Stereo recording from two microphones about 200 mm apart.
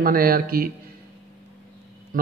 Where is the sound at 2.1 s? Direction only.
40° right (ahead or behind).